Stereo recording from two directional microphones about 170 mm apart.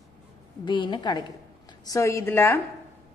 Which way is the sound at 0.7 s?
30° left (ahead or behind).